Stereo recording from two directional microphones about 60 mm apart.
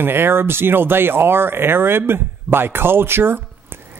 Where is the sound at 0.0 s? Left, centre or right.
Right.